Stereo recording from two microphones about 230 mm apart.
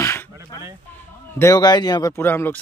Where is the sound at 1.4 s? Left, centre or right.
Centre.